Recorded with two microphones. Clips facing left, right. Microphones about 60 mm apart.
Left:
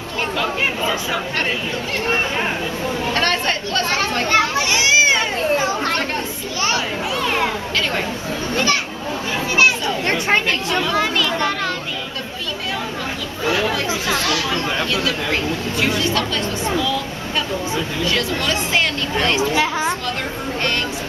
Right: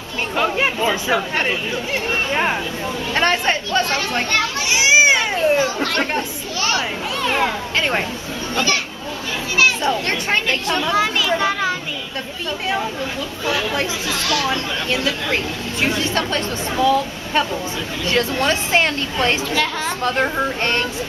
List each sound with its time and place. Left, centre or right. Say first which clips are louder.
0.4 s chatter: right 4 dB; right
3.1 s speech: right 3 dB; centre
4.3 s children playing: left 4 dB; centre
4.6 s a sound: right 2 dB; centre
5.6 s speech: even; left
7.2 s a child's voice: right 2 dB; centre
10.9 s children playing: right 3 dB; centre
14.4 s speech: left 1 dB; right
19.5 s speech: left 2 dB; centre